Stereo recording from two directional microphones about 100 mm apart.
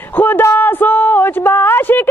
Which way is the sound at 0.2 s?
20° left (ahead or behind).